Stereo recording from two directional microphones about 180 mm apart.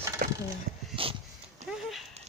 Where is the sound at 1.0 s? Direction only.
30° right (ahead or behind).